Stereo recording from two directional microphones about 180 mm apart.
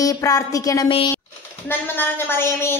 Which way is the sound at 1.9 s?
10° left (ahead or behind).